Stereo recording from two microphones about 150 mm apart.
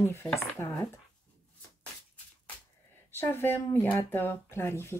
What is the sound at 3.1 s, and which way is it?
Speech, 15° left (ahead or behind).